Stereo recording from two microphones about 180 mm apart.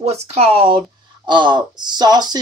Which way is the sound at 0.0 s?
35° right (ahead or behind).